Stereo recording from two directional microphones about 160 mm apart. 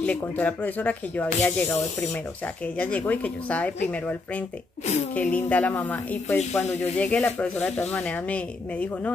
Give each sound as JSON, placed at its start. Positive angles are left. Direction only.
{"t": 0.0, "sound": "speech", "side_deg": 10}